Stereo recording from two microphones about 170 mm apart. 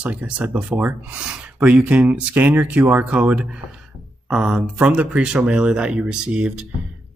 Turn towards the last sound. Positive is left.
turn(degrees=-5)  # may be behind; listen again after turning